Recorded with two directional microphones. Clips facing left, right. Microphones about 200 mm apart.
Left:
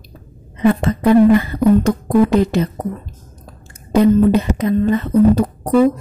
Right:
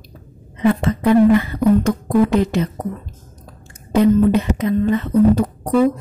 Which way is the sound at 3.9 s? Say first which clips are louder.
Left 2 dB; 40° left (ahead or behind).